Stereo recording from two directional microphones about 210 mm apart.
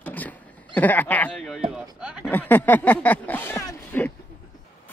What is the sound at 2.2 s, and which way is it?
Speech, 10° left (ahead or behind).